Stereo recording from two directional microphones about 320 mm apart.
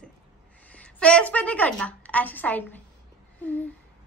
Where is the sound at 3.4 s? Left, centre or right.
Centre.